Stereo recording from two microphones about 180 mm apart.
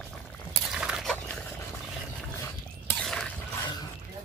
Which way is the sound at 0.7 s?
5° right (ahead or behind).